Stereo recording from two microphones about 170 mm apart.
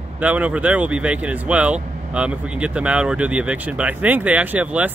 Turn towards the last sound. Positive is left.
turn(degrees=-10)  # may be behind; listen again after turning